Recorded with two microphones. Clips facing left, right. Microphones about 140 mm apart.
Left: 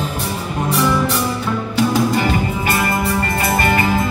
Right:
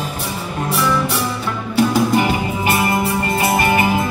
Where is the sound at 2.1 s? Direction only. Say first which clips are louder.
Right 1 dB; 15° right (ahead or behind).